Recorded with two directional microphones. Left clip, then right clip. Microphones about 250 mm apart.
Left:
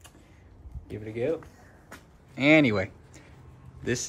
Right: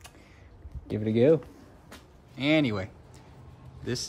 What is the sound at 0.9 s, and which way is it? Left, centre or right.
Speech, right.